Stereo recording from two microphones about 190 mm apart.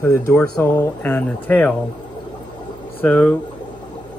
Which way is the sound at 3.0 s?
5° left (ahead or behind).